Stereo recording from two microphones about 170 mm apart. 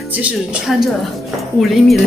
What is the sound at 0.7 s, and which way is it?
Speech, centre (ahead or behind).